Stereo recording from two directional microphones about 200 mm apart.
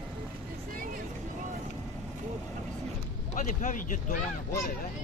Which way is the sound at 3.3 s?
40° left (ahead or behind).